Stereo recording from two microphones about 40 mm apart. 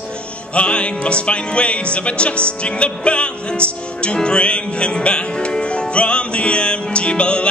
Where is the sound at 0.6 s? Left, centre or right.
Left.